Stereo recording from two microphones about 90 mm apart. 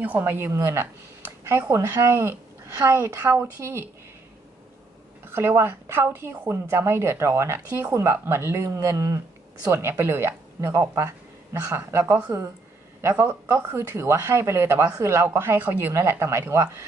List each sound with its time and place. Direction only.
0.0 s speech: 20° right (ahead or behind)
5.2 s speech: 25° right (ahead or behind)